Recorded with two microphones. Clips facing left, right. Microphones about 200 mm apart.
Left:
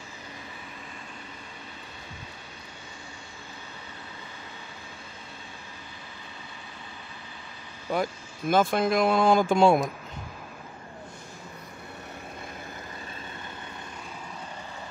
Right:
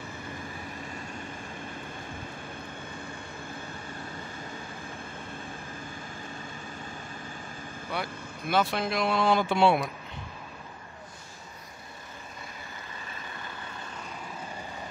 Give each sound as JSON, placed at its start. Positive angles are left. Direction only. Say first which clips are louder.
{"t": 7.9, "sound": "speech", "louder": "left 7 dB", "side_deg": 45}